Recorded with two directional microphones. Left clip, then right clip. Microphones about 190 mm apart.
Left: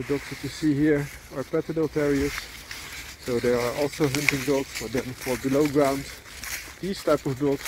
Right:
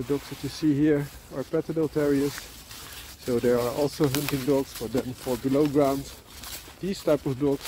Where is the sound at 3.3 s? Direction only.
15° right (ahead or behind).